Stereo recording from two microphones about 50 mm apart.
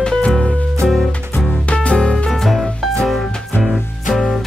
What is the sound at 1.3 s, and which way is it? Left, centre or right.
Music, left.